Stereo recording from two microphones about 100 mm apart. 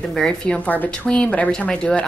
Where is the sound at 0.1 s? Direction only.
5° left (ahead or behind).